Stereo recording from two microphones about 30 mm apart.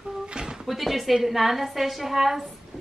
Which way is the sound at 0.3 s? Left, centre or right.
Right.